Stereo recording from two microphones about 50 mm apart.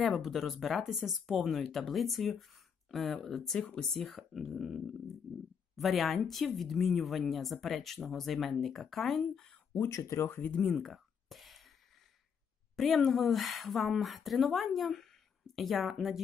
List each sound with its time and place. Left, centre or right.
0.0 s speech: centre
9.8 s speech: left
10.6 s a sound: centre
12.7 s speech: centre